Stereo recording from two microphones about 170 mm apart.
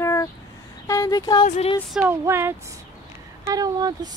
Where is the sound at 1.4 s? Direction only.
40° left (ahead or behind).